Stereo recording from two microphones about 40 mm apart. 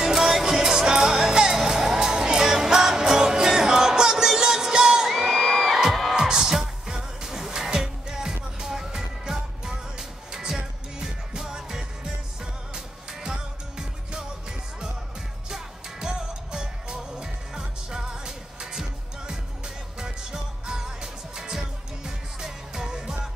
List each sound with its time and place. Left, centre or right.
0.0 s music: centre
6.1 s music: centre
15.5 s music: centre